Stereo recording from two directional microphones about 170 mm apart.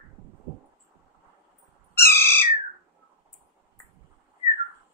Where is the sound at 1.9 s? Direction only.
15° left (ahead or behind).